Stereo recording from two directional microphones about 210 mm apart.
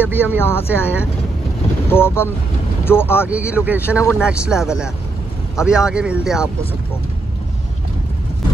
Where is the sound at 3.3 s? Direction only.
5° right (ahead or behind).